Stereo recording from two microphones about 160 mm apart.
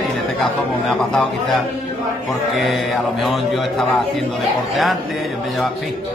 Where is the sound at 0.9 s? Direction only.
5° left (ahead or behind).